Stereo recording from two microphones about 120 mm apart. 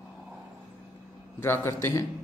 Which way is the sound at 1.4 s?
20° left (ahead or behind).